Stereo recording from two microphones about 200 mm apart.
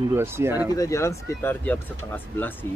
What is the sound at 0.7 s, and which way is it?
Speech, 15° left (ahead or behind).